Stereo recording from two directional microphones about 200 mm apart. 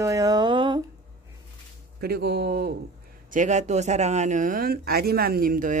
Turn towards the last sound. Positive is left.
turn(degrees=-45)  # may be behind; listen again after turning